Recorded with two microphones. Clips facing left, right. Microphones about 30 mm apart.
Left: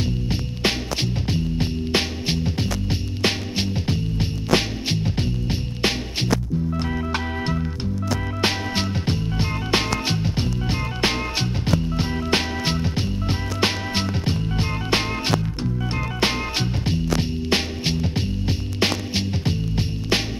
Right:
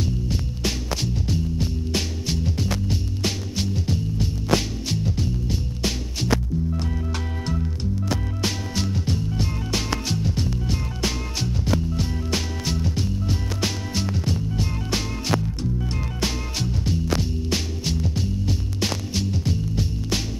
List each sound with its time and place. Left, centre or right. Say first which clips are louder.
0.0 s music: left 1 dB; left
7.4 s music: left 2 dB; left